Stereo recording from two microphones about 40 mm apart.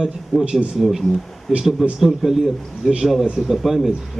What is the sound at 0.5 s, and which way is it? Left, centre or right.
Speech, right.